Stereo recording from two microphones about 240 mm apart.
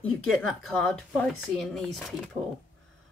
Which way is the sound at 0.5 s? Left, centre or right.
Centre.